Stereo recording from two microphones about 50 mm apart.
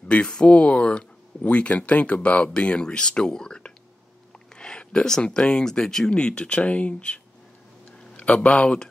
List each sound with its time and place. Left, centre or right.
0.1 s a man's voice: left